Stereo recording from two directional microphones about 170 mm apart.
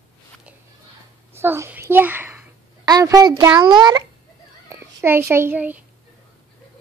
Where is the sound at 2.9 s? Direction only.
20° right (ahead or behind).